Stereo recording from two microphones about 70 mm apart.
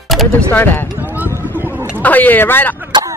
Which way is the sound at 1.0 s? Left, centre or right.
Right.